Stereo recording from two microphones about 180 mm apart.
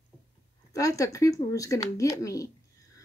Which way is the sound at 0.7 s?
20° left (ahead or behind).